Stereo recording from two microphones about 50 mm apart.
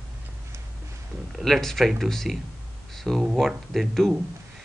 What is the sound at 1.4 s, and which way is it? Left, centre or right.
Speech, centre.